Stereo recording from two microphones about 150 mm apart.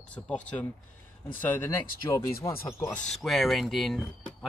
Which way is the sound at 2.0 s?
30° left (ahead or behind).